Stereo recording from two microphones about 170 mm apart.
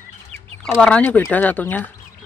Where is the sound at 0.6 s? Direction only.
5° left (ahead or behind).